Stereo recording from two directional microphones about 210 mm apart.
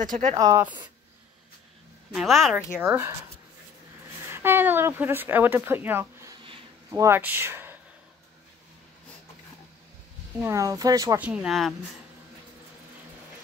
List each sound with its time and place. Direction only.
0.0 s speech: 35° right (ahead or behind)
0.4 s speech: 20° right (ahead or behind)
2.1 s speech: centre (ahead or behind)
4.3 s speech: 10° right (ahead or behind)
10.4 s speech: 15° right (ahead or behind)
11.1 s speech: 5° right (ahead or behind)